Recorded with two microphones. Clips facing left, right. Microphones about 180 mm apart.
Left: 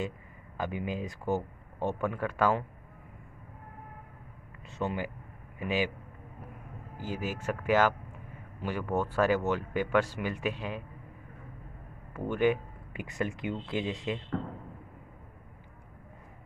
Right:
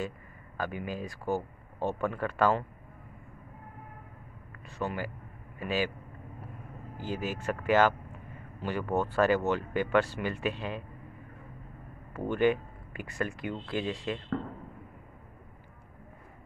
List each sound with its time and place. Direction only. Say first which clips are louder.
0.6 s speech: left 1 dB; 20° left (ahead or behind)
4.6 s speech: left 1 dB; 20° left (ahead or behind)
7.1 s speech: right 1 dB; 10° left (ahead or behind)
12.1 s speech: right 1 dB; 10° left (ahead or behind)